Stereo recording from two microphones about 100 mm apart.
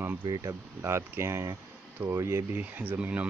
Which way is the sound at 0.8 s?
25° right (ahead or behind).